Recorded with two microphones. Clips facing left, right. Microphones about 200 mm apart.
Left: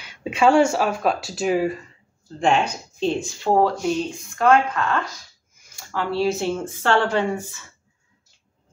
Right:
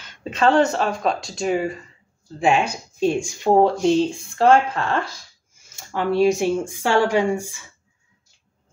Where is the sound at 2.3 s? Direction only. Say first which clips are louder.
Right 1 dB; 10° right (ahead or behind).